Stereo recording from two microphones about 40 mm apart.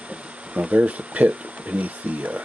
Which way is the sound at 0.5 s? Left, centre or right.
Right.